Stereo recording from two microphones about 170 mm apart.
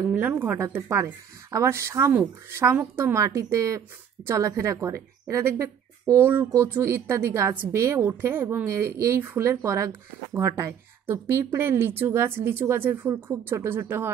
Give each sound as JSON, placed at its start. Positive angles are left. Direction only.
{"t": 0.2, "sound": "speech", "side_deg": -10}